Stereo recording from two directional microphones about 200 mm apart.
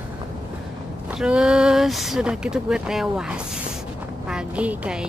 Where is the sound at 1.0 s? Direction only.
5° right (ahead or behind).